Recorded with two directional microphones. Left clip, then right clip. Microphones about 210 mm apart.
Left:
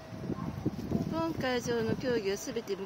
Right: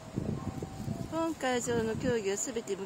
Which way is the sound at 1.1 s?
Centre (ahead or behind).